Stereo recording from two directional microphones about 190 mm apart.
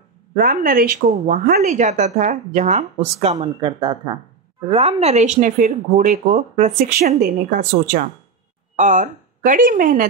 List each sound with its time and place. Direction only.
0.4 s a woman's voice: 45° right (ahead or behind)
1.7 s a woman's voice: 40° right (ahead or behind)